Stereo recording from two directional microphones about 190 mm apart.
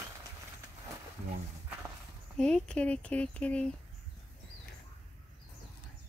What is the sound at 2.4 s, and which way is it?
Speech, 5° left (ahead or behind).